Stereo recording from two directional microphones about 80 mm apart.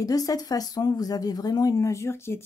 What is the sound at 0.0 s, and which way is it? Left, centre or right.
Speech, left.